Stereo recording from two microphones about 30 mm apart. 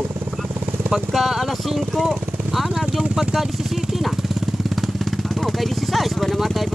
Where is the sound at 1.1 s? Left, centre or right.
Centre.